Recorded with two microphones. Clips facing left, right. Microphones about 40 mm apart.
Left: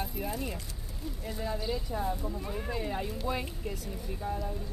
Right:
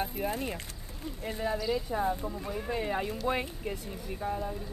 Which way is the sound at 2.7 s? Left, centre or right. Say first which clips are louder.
Right 4 dB; right.